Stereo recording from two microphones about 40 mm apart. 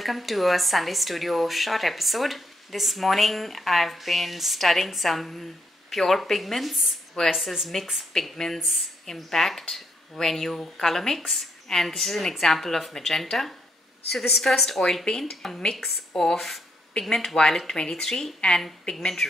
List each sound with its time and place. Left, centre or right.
0.0 s speech: centre
7.2 s speech: centre
8.5 s speech: centre
9.0 s speech: centre